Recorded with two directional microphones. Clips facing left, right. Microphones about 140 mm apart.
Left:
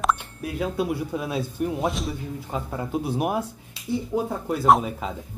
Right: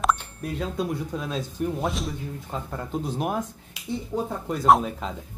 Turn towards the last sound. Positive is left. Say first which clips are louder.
# even
turn(degrees=5)  # may be behind; listen again after turning